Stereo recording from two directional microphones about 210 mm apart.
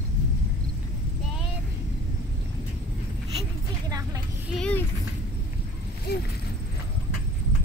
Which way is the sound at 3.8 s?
15° right (ahead or behind).